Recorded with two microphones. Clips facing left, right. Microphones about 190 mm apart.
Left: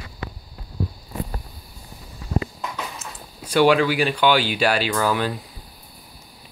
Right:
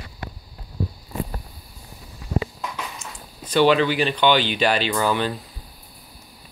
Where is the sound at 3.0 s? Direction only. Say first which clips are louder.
Left 1 dB; 10° left (ahead or behind).